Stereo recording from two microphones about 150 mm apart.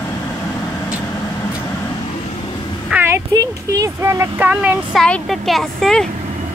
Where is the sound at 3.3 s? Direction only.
25° right (ahead or behind).